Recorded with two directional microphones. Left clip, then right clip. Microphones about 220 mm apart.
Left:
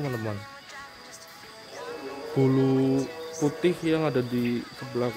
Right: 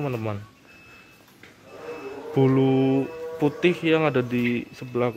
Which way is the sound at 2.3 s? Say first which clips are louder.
Right 3 dB; 5° right (ahead or behind).